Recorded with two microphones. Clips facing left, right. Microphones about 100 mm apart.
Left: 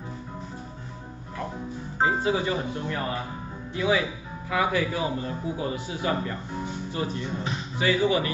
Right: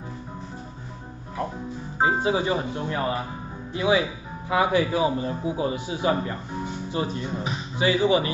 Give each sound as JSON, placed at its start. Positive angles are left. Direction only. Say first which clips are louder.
{"t": 2.0, "sound": "a man's voice", "louder": "right 2 dB", "side_deg": -20}